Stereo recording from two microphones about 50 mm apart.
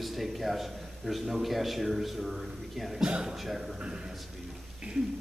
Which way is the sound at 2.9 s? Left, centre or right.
Centre.